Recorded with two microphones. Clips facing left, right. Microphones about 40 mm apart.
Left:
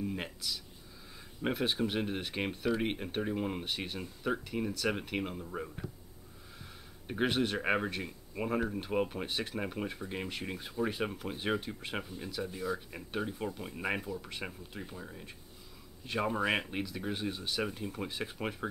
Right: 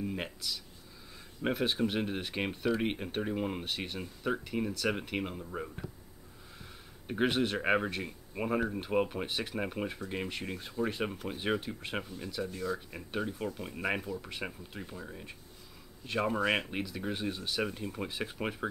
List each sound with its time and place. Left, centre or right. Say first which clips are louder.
0.0 s a sound: right 1 dB; centre
1.4 s speech: right 1 dB; centre
7.1 s speech: right 1 dB; centre